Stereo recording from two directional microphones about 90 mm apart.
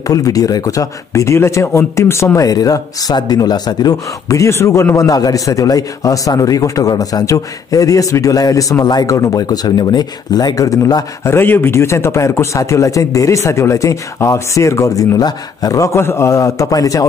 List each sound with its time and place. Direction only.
0.0 s a man's voice: 40° left (ahead or behind)
11.2 s a man's voice: 25° left (ahead or behind)
15.1 s a man's voice: 45° left (ahead or behind)